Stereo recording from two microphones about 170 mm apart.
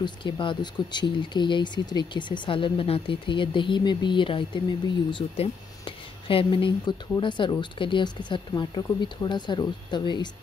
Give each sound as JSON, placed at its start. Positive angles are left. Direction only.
{"t": 0.0, "sound": "speech", "side_deg": 30}